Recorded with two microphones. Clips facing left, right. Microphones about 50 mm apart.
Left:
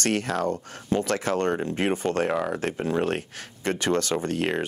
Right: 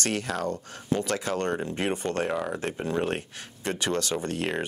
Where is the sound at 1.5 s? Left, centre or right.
Left.